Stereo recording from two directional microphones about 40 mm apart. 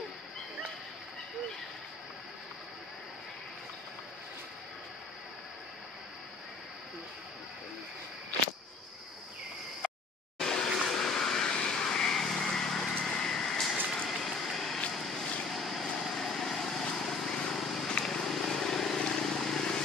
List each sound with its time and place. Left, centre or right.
10.4 s vehicle: centre